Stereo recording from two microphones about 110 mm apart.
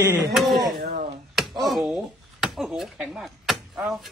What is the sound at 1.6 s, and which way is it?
Speech, centre (ahead or behind).